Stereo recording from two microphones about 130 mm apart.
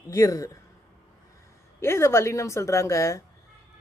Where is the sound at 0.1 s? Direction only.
25° left (ahead or behind).